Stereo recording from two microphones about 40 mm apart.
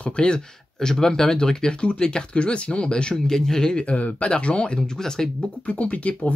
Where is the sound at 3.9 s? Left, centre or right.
Left.